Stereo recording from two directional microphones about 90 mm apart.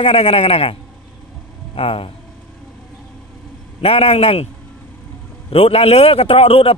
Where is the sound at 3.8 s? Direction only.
90° left.